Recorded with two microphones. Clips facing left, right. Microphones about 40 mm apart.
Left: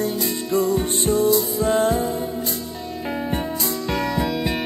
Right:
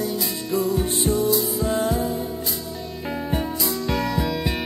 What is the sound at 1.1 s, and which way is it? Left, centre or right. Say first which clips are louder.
Music: left 4 dB; centre.